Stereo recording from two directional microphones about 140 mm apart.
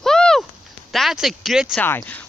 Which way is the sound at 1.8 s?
15° left (ahead or behind).